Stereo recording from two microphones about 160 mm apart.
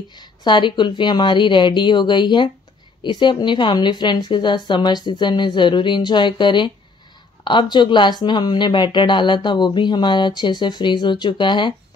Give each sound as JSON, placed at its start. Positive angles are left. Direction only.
{"t": 0.1, "sound": "speech", "side_deg": 25}
{"t": 7.7, "sound": "speech", "side_deg": 30}